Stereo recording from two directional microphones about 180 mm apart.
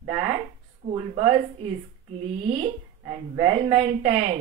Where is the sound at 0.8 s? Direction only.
30° right (ahead or behind).